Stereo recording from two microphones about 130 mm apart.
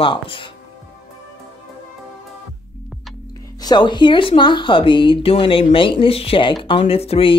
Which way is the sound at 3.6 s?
35° left (ahead or behind).